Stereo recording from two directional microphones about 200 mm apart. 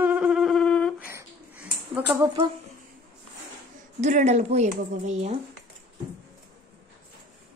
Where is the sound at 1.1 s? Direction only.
10° right (ahead or behind).